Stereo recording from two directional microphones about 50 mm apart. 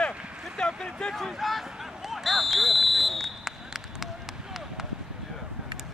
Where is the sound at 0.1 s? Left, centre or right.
Right.